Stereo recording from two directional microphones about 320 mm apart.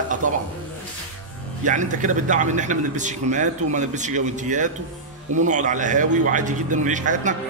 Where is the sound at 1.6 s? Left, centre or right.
Right.